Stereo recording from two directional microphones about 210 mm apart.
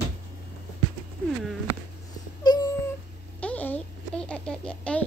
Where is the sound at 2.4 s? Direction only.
20° left (ahead or behind).